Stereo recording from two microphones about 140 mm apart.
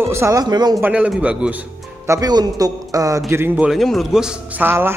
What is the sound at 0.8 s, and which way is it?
Speech, 10° right (ahead or behind).